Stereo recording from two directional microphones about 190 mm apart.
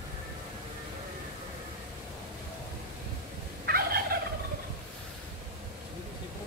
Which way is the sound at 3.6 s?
50° right (ahead or behind).